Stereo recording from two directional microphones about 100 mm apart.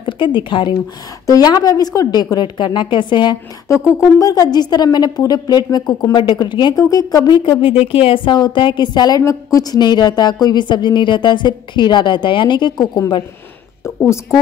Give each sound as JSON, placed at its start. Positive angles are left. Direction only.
{"t": 0.0, "sound": "speech", "side_deg": 55}
{"t": 1.2, "sound": "a woman's voice", "side_deg": 40}
{"t": 4.2, "sound": "a woman's voice", "side_deg": 35}
{"t": 7.8, "sound": "a woman's voice", "side_deg": 70}
{"t": 9.2, "sound": "a woman's voice", "side_deg": 35}
{"t": 13.8, "sound": "a woman's voice", "side_deg": 30}